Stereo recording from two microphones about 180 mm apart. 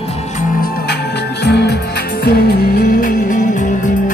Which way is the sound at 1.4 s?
65° left (ahead or behind).